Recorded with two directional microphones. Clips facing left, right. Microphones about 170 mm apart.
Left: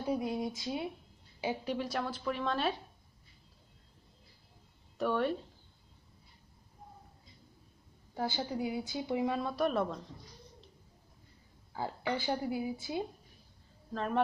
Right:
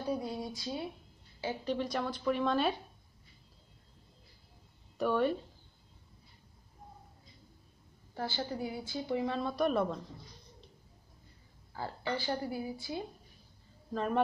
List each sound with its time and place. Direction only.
0.1 s a woman's voice: 20° left (ahead or behind); by 2.7 s centre (ahead or behind)
4.9 s a woman's voice: centre (ahead or behind)
8.1 s speech: 15° left (ahead or behind); by 9.9 s centre (ahead or behind)
11.7 s speech: 15° left (ahead or behind)
13.9 s a woman's voice: 5° right (ahead or behind)